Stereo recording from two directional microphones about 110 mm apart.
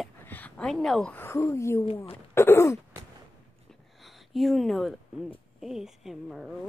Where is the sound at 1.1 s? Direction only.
20° left (ahead or behind).